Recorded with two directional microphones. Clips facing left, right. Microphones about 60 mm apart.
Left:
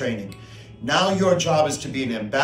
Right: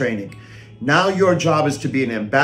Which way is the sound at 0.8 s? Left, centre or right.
Right.